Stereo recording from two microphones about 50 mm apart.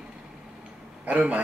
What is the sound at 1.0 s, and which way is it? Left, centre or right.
Speech, right.